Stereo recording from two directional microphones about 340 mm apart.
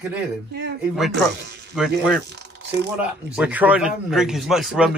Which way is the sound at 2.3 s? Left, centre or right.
Right.